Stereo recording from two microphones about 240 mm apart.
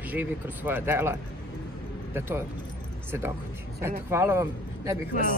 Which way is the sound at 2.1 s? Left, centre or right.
Centre.